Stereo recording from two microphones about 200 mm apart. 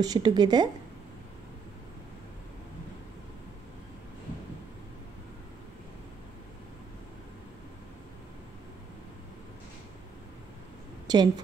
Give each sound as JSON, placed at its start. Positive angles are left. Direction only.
{"t": 0.0, "sound": "a woman's voice", "side_deg": -20}
{"t": 11.1, "sound": "a woman's voice", "side_deg": -20}